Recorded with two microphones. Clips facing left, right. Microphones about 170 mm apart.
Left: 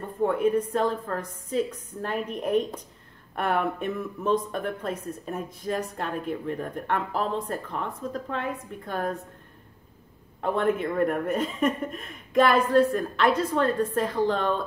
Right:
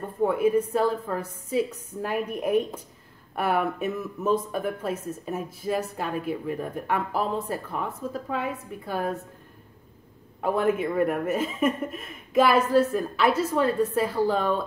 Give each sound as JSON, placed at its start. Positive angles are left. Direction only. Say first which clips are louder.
{"t": 0.2, "sound": "a woman's voice", "louder": "right 1 dB", "side_deg": -5}
{"t": 10.4, "sound": "speech", "louder": "right 1 dB", "side_deg": -5}